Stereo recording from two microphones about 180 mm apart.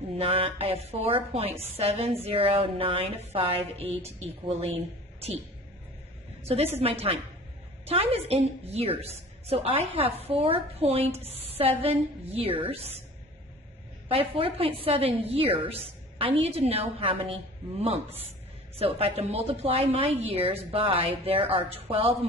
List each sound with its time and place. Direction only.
0.2 s a woman's voice: 35° right (ahead or behind)
6.4 s a woman's voice: 35° right (ahead or behind)
14.0 s a woman's voice: 30° right (ahead or behind)